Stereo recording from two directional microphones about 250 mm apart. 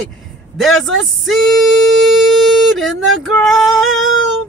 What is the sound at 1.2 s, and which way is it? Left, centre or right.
Singing, centre.